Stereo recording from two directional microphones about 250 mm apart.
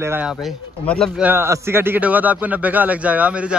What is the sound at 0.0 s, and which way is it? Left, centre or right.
A man's voice, centre.